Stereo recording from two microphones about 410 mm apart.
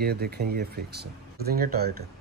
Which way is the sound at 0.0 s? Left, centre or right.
Right.